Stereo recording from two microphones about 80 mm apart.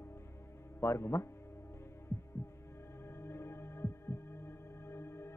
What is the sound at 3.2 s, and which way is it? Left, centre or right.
Heart sounds, left.